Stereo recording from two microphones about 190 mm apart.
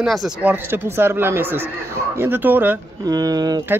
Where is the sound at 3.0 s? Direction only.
20° right (ahead or behind).